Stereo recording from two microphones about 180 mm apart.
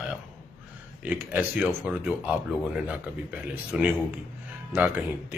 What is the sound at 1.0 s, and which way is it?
Speech, 10° right (ahead or behind).